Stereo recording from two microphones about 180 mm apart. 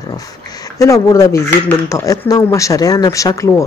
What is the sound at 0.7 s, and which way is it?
Speech, 15° left (ahead or behind).